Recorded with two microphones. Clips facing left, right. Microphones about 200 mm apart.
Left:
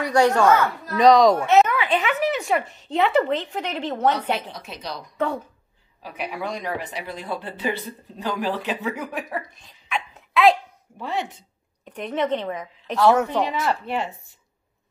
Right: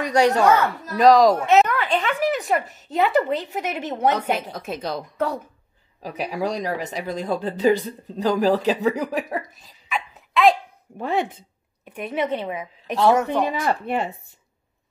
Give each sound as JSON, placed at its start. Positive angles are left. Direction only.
{"t": 0.0, "sound": "a child's voice", "side_deg": -20}
{"t": 0.9, "sound": "speech", "side_deg": -5}
{"t": 1.7, "sound": "a woman's voice", "side_deg": 5}
{"t": 4.1, "sound": "a woman's voice", "side_deg": -45}
{"t": 6.0, "sound": "speech", "side_deg": -40}
{"t": 9.5, "sound": "a sound", "side_deg": 0}
{"t": 11.0, "sound": "a woman's voice", "side_deg": -55}
{"t": 11.8, "sound": "a woman's voice", "side_deg": -10}
{"t": 13.6, "sound": "a woman's voice", "side_deg": -50}